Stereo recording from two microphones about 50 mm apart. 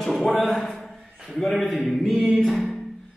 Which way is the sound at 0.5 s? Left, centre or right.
Centre.